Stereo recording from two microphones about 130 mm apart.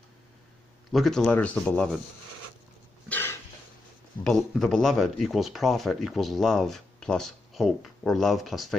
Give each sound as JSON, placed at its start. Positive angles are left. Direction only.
{"t": 0.9, "sound": "speech", "side_deg": 5}
{"t": 3.1, "sound": "a sound", "side_deg": 15}
{"t": 4.2, "sound": "speech", "side_deg": 5}